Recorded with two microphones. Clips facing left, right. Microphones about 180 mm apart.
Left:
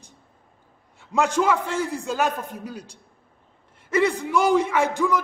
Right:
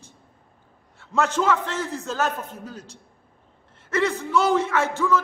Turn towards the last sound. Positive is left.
turn(degrees=15)  # may be behind; listen again after turning